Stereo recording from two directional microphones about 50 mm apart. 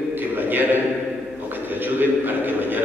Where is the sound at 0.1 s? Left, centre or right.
Right.